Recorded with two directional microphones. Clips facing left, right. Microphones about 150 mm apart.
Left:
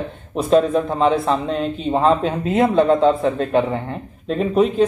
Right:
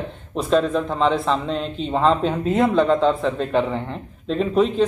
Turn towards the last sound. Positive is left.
turn(degrees=5)  # may be behind; listen again after turning